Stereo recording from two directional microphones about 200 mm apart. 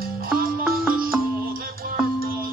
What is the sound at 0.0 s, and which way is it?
Music, 45° right (ahead or behind).